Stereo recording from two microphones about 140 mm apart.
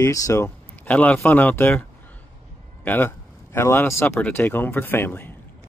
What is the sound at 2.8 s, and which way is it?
Speech, 15° left (ahead or behind).